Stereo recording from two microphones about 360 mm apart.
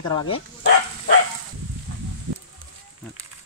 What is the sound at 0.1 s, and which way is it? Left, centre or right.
Speech, centre.